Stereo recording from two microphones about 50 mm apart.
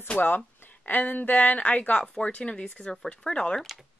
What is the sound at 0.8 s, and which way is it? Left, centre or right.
A woman's voice, left.